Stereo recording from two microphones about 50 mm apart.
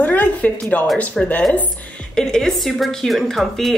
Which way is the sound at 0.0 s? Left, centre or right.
Left.